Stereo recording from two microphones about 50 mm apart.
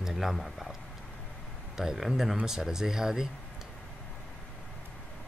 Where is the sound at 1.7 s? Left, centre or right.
Centre.